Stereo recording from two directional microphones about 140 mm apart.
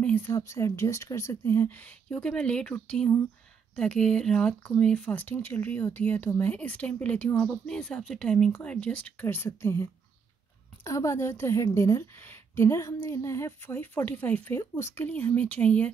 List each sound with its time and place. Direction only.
0.0 s speech: 15° left (ahead or behind)